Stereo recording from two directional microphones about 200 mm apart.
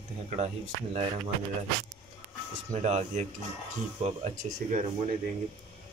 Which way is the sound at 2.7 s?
35° right (ahead or behind).